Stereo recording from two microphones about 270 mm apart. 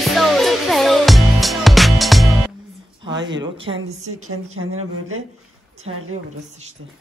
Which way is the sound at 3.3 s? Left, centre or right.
Centre.